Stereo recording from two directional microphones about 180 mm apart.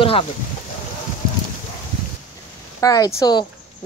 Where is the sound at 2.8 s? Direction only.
20° left (ahead or behind).